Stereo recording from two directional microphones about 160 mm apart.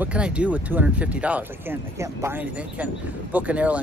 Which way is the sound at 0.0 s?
5° right (ahead or behind).